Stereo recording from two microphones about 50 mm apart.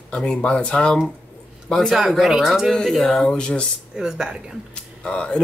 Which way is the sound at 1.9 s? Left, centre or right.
Centre.